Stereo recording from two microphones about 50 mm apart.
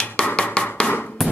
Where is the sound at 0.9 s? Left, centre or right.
Left.